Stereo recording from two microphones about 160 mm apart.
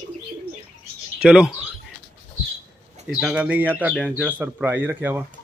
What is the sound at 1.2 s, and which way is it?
Speech, 5° right (ahead or behind).